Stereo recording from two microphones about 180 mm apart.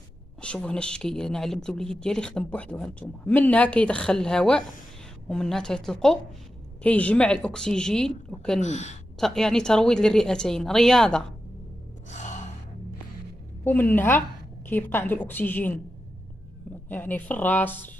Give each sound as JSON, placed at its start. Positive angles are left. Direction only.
{"t": 0.4, "sound": "speech", "side_deg": 5}
{"t": 8.5, "sound": "speech", "side_deg": 40}
{"t": 9.2, "sound": "speech", "side_deg": 5}
{"t": 12.1, "sound": "gasp", "side_deg": 40}
{"t": 13.7, "sound": "a woman's voice", "side_deg": 10}
{"t": 16.9, "sound": "a woman's voice", "side_deg": 10}